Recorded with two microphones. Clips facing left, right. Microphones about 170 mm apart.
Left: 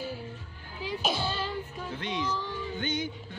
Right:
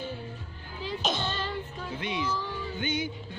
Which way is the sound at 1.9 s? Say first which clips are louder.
Right 1 dB; 10° right (ahead or behind).